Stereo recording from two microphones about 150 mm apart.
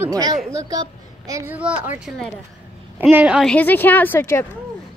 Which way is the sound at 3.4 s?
10° left (ahead or behind).